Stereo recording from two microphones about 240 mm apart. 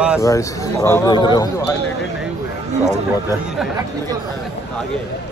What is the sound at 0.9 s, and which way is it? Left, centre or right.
Speech, centre.